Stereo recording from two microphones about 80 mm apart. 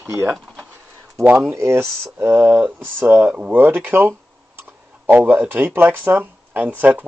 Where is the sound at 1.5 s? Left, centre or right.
Right.